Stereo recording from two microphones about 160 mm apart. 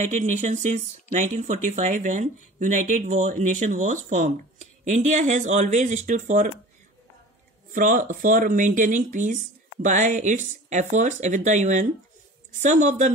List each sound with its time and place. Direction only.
0.0 s speech: 50° right (ahead or behind)
7.7 s speech: 55° right (ahead or behind)